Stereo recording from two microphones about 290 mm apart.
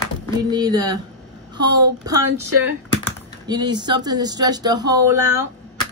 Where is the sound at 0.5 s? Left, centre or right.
Centre.